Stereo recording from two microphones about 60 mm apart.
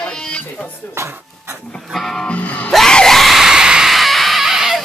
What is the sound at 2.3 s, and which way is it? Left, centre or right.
Music, left.